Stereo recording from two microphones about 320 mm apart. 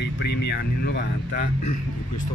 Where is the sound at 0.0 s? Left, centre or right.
Left.